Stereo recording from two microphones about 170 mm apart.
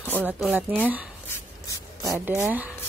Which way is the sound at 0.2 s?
10° right (ahead or behind).